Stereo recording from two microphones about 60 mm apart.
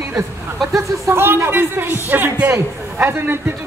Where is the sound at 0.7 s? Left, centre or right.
Right.